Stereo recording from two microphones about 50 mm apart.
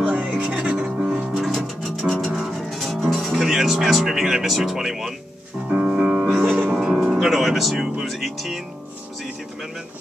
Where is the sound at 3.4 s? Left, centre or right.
Centre.